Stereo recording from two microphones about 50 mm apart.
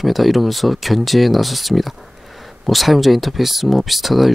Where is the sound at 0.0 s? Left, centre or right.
Centre.